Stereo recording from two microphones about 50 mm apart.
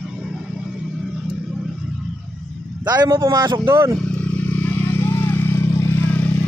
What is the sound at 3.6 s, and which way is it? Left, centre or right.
Speech, right.